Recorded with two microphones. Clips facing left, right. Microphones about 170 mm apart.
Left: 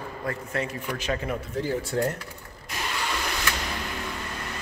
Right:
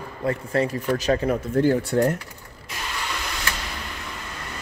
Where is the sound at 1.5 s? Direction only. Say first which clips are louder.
Right 7 dB; 55° right (ahead or behind).